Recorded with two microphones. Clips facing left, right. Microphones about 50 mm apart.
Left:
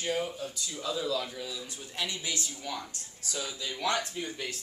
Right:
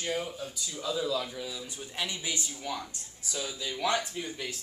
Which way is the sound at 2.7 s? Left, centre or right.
Centre.